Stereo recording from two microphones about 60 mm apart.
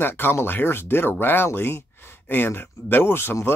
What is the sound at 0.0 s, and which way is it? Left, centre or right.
Speech, left.